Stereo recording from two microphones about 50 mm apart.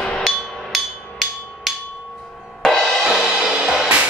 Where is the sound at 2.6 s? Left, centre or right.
Centre.